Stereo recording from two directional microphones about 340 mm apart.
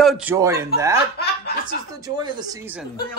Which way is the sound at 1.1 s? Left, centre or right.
Left.